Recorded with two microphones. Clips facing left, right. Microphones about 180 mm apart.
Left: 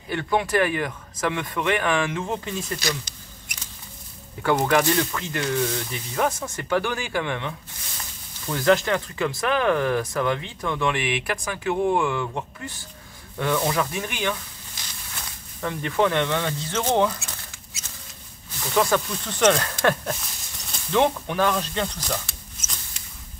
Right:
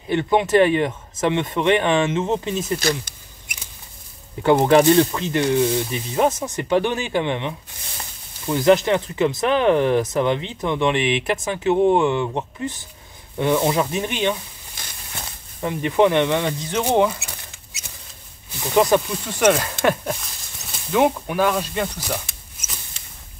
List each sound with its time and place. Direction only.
0.1 s speech: 20° right (ahead or behind)
4.4 s speech: 25° right (ahead or behind)
14.8 s a sound: 55° right (ahead or behind)
15.6 s speech: 15° right (ahead or behind)
19.8 s a sound: 15° right (ahead or behind)
20.9 s speech: 10° right (ahead or behind)